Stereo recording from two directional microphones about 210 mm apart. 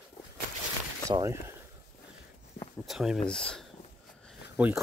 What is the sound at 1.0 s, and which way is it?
Speech, 15° right (ahead or behind).